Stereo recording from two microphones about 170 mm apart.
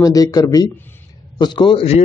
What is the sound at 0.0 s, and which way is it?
Speech, 20° left (ahead or behind).